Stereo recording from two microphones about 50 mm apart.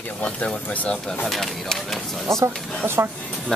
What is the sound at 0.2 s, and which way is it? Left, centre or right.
Speech, left.